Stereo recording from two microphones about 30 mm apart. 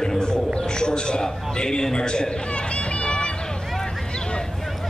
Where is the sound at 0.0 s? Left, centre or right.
Left.